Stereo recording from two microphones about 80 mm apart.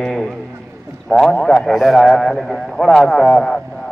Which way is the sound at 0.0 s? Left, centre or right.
Centre.